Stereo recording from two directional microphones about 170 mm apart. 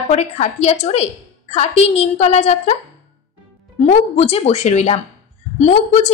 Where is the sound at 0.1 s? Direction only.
40° left (ahead or behind).